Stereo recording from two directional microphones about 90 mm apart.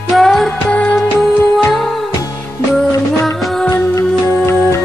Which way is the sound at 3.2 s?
5° left (ahead or behind).